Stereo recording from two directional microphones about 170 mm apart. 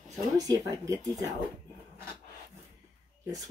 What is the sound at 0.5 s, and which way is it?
Speech, 20° right (ahead or behind).